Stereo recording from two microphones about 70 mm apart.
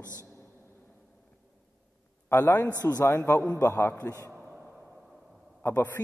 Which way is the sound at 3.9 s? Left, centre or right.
Left.